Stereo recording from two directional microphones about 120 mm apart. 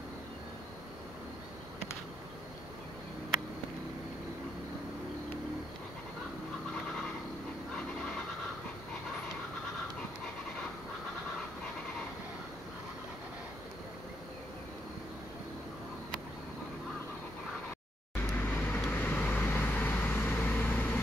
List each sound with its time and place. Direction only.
18.1 s vehicle: 15° left (ahead or behind)